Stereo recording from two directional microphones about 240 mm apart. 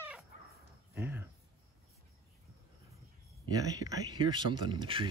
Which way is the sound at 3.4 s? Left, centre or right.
Centre.